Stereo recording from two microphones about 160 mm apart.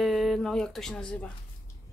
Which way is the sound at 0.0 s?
Centre (ahead or behind).